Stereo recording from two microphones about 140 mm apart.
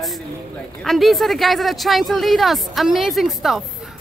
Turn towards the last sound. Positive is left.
turn(degrees=0)  # may be behind; listen again after turning